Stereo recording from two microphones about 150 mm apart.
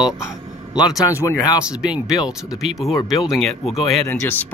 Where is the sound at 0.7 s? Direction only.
25° left (ahead or behind).